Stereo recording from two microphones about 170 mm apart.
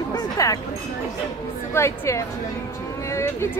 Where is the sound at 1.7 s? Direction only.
15° left (ahead or behind).